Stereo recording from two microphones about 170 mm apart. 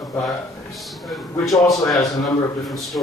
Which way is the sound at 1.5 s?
20° left (ahead or behind).